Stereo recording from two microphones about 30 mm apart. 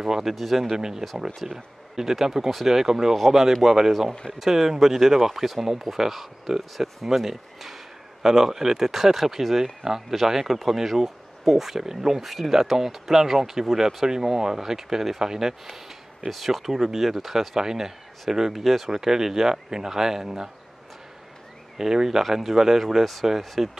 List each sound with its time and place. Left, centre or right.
0.2 s speech: centre
0.7 s speech: centre
8.2 s speech: centre
9.6 s speech: centre
12.3 s speech: centre
16.3 s speech: centre
18.6 s speech: centre
18.9 s speech: centre
21.7 s speech: centre